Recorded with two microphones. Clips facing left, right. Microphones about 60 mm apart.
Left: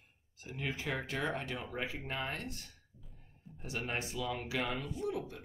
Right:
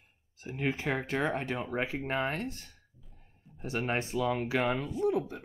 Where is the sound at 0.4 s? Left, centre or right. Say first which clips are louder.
Right 7 dB; right.